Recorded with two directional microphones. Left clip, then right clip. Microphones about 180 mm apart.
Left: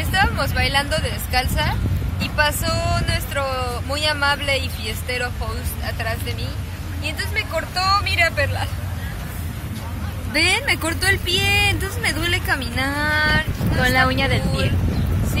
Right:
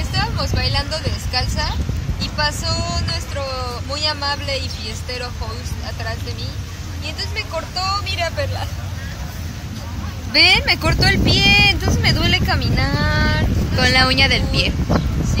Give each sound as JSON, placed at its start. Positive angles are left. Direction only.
{"t": 0.1, "sound": "speech", "side_deg": 5}
{"t": 7.1, "sound": "speech", "side_deg": 0}
{"t": 10.3, "sound": "speech", "side_deg": -20}